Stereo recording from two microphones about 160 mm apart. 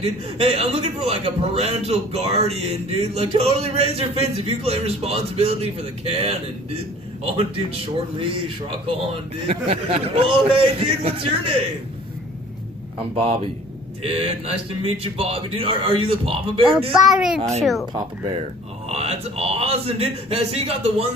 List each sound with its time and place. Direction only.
0.0 s a man's voice: 40° right (ahead or behind)
13.1 s a man's voice: 35° right (ahead or behind)
17.1 s a child's voice: 5° right (ahead or behind)
17.4 s a child's voice: 40° right (ahead or behind)
18.9 s a man's voice: 40° right (ahead or behind)